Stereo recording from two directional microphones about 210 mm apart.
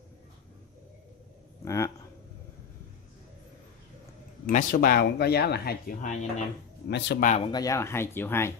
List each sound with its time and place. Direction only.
1.6 s speech: 15° left (ahead or behind)
4.5 s speech: 45° left (ahead or behind)
6.9 s speech: 55° left (ahead or behind)
7.2 s speech: 35° left (ahead or behind)
7.5 s speech: 15° left (ahead or behind)